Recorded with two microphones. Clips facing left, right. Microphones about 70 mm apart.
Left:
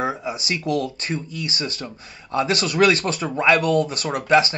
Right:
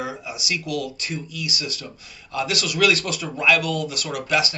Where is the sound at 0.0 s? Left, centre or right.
Left.